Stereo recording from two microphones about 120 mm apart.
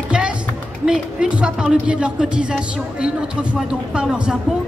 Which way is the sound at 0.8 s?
5° right (ahead or behind).